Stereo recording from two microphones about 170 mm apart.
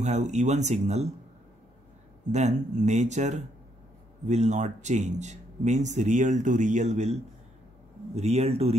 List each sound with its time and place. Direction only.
0.0 s speech: 40° right (ahead or behind)
2.3 s speech: 45° right (ahead or behind)